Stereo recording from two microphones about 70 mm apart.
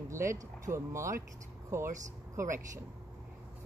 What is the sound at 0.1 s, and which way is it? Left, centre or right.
Speech, right.